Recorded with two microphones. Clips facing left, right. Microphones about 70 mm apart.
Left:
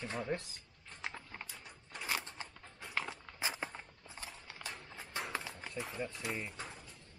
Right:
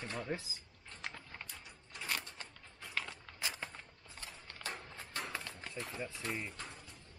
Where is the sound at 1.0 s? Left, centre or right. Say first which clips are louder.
Left 2 dB; centre.